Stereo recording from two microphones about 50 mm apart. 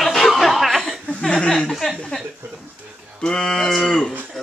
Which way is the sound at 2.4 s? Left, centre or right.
Right.